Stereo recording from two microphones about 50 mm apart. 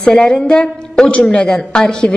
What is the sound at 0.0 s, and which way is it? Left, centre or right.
A woman's voice, centre.